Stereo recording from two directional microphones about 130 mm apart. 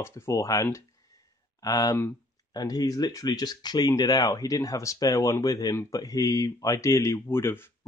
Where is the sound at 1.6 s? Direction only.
30° left (ahead or behind).